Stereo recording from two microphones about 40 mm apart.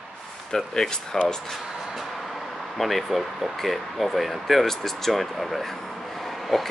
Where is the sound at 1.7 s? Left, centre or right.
Centre.